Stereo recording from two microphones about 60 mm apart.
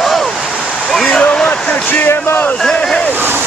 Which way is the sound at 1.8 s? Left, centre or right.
Left.